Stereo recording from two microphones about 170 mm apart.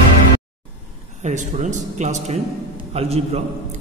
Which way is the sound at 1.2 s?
45° right (ahead or behind).